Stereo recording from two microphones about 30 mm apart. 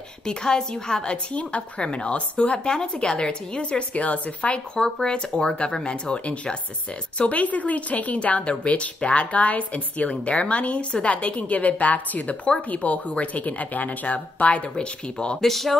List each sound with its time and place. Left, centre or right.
0.2 s a woman's voice: left
2.7 s a woman's voice: left
3.9 s a woman's voice: left
4.8 s a woman's voice: centre
7.2 s a woman's voice: left
11.1 s a woman's voice: left
14.8 s a woman's voice: left
15.4 s speech: centre